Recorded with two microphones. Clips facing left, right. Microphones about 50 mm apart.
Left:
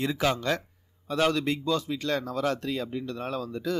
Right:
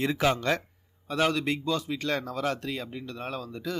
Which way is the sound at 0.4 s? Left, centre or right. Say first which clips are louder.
Right 1 dB; right.